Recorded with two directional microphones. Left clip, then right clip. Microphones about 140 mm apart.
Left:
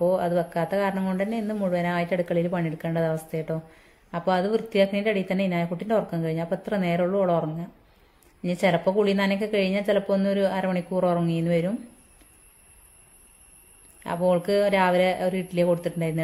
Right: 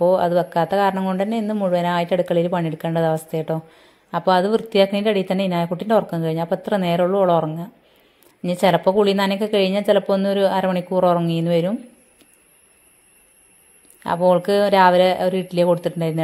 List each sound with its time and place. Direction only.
0.0 s speech: 30° right (ahead or behind)
14.0 s speech: 35° right (ahead or behind)